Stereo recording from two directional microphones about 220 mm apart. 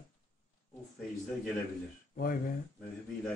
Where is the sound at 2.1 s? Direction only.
40° left (ahead or behind).